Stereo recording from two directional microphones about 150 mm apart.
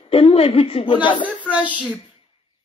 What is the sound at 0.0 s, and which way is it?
A woman's voice, 40° left (ahead or behind).